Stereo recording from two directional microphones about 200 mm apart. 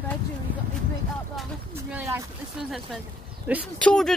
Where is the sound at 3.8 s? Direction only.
5° left (ahead or behind).